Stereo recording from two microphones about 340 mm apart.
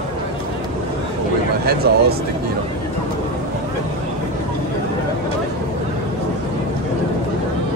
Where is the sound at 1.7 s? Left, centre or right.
Right.